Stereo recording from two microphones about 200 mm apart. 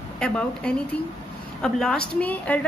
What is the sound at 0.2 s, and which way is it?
A woman's voice, 5° left (ahead or behind).